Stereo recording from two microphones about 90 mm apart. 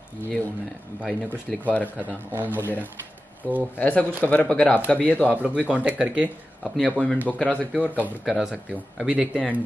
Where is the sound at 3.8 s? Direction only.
15° left (ahead or behind).